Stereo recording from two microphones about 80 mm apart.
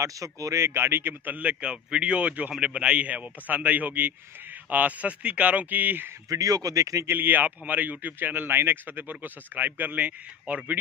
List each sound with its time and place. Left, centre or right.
0.0 s a man's voice: right
6.2 s speech: right
7.1 s a man's voice: right